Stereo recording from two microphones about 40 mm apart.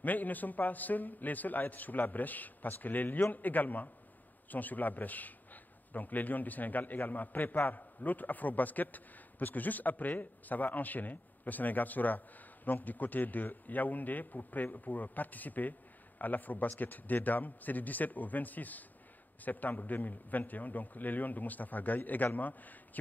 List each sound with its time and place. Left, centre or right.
0.0 s a man's voice: left